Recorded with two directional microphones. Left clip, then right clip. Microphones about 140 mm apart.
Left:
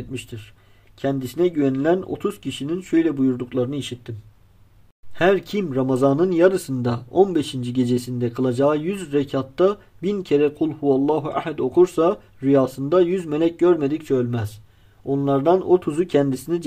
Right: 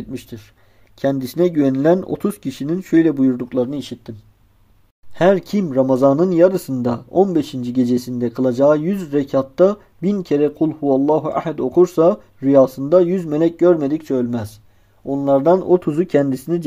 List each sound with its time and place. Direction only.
1.0 s speech: 65° right (ahead or behind)
5.1 s speech: 50° right (ahead or behind)
15.0 s speech: 60° right (ahead or behind); by 16.6 s 35° right (ahead or behind)